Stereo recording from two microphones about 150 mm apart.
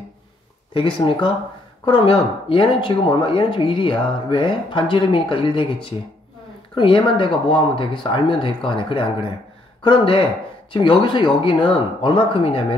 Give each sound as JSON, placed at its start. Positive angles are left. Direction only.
{"t": 0.7, "sound": "speech", "side_deg": 35}